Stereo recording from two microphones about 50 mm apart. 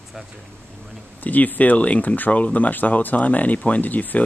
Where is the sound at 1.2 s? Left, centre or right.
Left.